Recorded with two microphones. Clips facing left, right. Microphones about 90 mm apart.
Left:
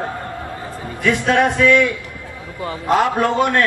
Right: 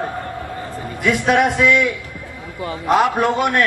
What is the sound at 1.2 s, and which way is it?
A man's voice, 15° right (ahead or behind).